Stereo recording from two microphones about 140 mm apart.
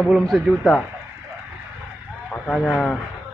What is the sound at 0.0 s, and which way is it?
Speech, centre (ahead or behind).